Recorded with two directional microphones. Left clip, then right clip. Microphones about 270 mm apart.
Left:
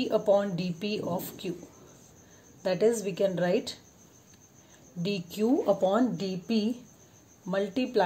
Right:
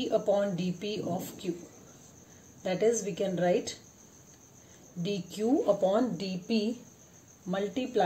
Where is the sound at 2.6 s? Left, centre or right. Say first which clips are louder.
Left 2 dB; left.